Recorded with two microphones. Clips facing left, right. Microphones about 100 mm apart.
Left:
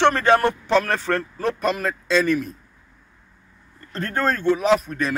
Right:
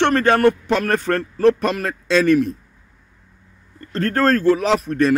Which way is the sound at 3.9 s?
75° right (ahead or behind).